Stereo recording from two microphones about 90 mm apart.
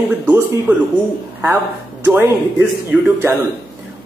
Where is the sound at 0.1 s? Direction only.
20° right (ahead or behind).